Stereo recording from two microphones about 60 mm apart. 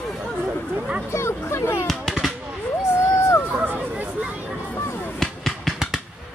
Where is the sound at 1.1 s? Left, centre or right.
Left.